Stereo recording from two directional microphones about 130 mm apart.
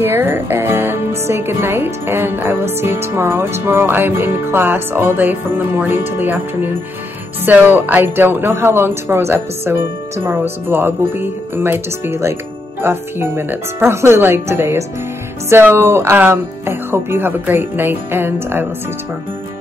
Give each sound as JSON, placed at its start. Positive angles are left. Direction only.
{"t": 0.0, "sound": "speech", "side_deg": -15}